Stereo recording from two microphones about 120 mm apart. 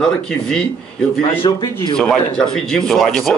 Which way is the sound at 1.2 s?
40° left (ahead or behind).